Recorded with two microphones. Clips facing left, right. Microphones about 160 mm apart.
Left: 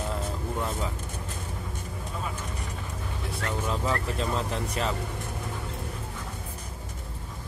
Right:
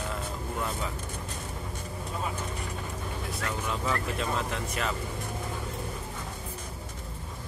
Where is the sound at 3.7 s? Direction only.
30° left (ahead or behind).